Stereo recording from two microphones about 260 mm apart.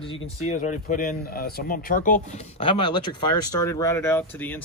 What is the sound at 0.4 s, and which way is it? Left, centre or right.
Speech, left.